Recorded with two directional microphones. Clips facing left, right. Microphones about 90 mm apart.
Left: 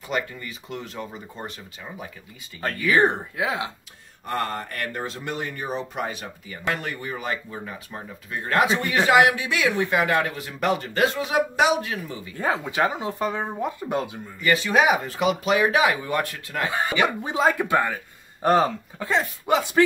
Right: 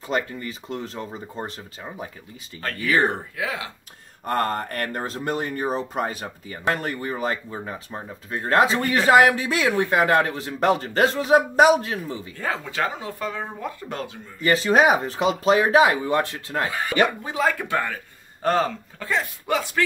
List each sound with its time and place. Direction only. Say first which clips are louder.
0.1 s speech: right 2 dB; 35° right (ahead or behind)
3.0 s speech: left 2 dB; 20° left (ahead or behind)
4.3 s speech: right 4 dB; 45° right (ahead or behind)
12.4 s speech: left 4 dB; 15° left (ahead or behind)
14.4 s speech: right 2 dB; 35° right (ahead or behind)
17.2 s speech: left 2 dB; 20° left (ahead or behind)